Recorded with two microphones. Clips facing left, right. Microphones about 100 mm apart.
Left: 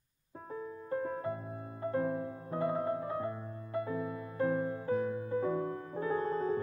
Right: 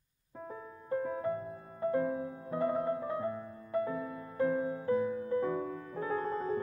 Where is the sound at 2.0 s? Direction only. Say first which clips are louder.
Left 3 dB; centre (ahead or behind).